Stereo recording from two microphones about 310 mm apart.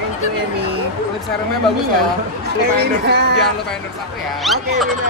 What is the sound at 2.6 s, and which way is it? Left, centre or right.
Speech, right.